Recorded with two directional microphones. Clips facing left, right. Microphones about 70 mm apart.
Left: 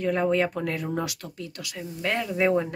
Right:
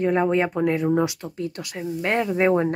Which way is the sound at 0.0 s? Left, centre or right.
Right.